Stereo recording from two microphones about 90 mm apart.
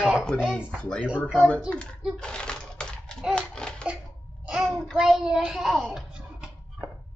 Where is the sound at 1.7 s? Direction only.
10° left (ahead or behind).